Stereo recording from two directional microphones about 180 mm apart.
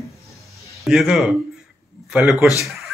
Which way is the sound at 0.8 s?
Centre (ahead or behind).